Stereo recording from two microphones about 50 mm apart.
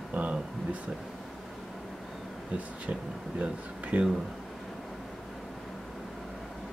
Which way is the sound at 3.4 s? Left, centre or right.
Right.